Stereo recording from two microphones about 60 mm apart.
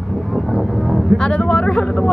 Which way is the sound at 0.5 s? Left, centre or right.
Centre.